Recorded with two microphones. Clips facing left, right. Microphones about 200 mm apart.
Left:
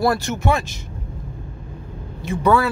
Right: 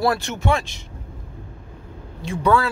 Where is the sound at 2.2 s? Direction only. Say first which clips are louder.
Left 2 dB; 5° left (ahead or behind).